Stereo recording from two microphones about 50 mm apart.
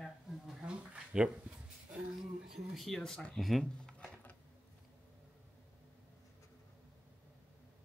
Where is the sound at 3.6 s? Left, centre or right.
Centre.